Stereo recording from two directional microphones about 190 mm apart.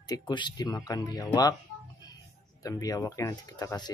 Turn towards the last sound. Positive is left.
turn(degrees=20)  # may be behind; listen again after turning